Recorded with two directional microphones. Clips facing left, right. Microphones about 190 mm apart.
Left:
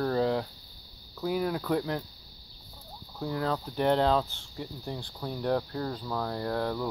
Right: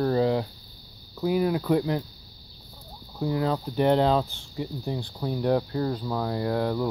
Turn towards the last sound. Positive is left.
turn(degrees=-10)  # may be behind; listen again after turning